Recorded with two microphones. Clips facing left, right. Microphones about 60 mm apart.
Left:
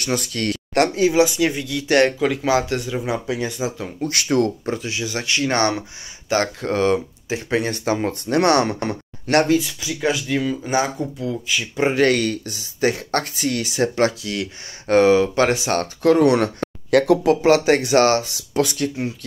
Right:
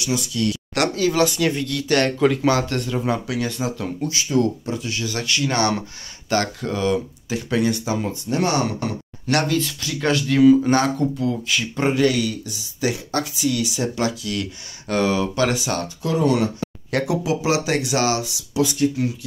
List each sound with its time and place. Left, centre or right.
0.0 s speech: left
0.7 s speech: left
1.1 s speech: centre
1.9 s speech: left
2.1 s speech: centre
4.1 s speech: left
4.8 s speech: left
5.4 s speech: left
8.8 s speech: left
9.6 s speech: centre
11.9 s speech: left
15.8 s speech: left